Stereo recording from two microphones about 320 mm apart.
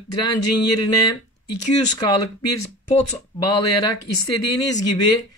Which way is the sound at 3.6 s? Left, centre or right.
Left.